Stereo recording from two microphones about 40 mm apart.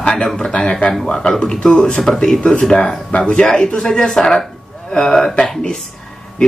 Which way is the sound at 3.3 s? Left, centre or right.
Left.